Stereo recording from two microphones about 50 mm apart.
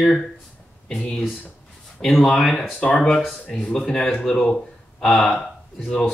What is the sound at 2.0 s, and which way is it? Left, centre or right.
Speech, centre.